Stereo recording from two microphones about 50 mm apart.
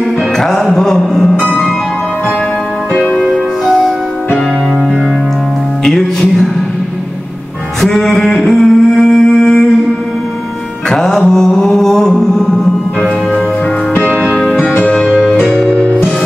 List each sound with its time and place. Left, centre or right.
0.4 s music: centre
0.7 s mantra: centre
1.4 s harp: centre
3.6 s music: centre
5.9 s music: centre
7.8 s a sound: centre
10.9 s music: centre
14.3 s music: centre